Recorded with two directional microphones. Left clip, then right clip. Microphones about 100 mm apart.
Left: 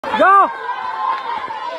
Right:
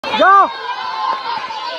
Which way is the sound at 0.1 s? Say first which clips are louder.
Right 1 dB; centre (ahead or behind).